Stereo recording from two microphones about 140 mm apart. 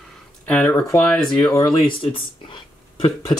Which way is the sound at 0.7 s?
25° left (ahead or behind).